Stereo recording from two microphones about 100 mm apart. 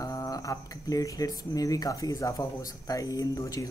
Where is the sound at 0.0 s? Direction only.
35° left (ahead or behind).